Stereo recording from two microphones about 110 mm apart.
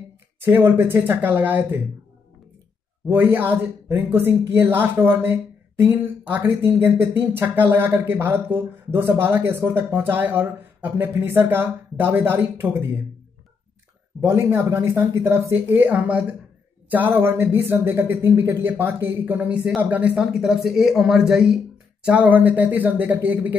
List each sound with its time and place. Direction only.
0.4 s speech: 20° right (ahead or behind)
3.1 s speech: 20° right (ahead or behind)
14.2 s speech: 25° right (ahead or behind)